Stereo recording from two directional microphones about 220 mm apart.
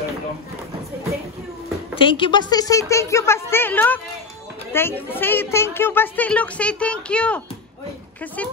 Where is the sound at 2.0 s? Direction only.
25° left (ahead or behind).